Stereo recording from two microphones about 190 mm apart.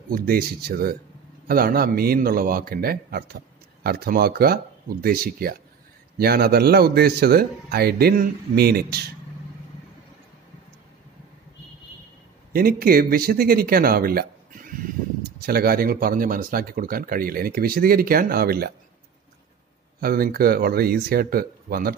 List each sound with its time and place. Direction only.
0.1 s speech: 50° right (ahead or behind)
12.5 s speech: 50° right (ahead or behind)
20.0 s speech: 50° right (ahead or behind)